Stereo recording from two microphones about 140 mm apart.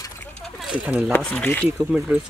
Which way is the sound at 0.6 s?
5° right (ahead or behind).